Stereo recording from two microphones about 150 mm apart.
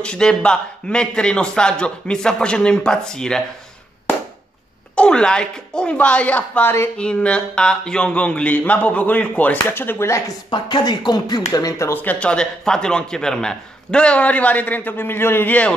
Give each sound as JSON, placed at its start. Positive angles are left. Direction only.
{"t": 0.0, "sound": "a man's voice", "side_deg": 5}
{"t": 4.9, "sound": "speech", "side_deg": 5}